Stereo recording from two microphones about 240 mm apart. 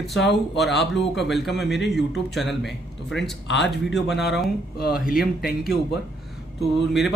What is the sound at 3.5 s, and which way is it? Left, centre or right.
Speech, left.